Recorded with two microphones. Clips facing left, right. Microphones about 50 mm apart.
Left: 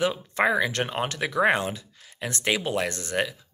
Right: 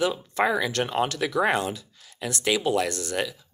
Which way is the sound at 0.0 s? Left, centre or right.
Left.